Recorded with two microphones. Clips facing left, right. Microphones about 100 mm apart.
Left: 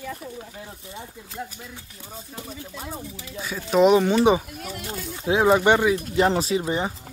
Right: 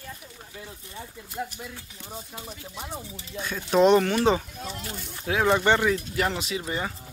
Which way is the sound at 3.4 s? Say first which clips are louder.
Left 2 dB; 5° left (ahead or behind).